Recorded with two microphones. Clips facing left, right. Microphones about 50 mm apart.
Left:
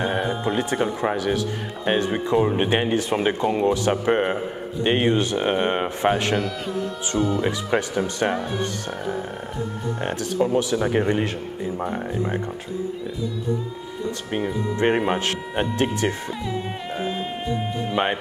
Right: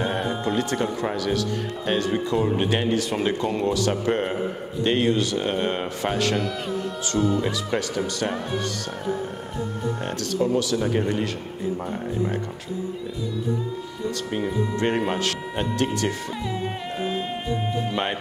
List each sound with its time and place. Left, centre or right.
0.0 s speech: centre; by 6.3 s left
7.2 s speech: centre
7.4 s speech: left
10.0 s speech: left
14.8 s speech: left
16.4 s music: centre